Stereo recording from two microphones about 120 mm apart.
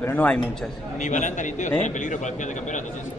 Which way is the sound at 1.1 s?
90° left.